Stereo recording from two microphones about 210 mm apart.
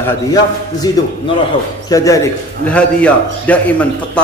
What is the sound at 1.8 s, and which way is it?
A man's voice, 15° left (ahead or behind).